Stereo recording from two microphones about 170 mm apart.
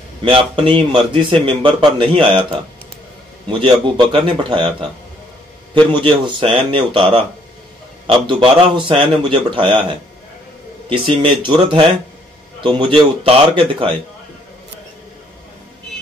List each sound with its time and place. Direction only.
0.2 s a man's voice: 30° right (ahead or behind)
5.9 s a man's voice: 30° right (ahead or behind)